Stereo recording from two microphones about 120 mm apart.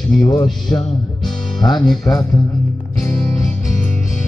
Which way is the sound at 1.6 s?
35° left (ahead or behind).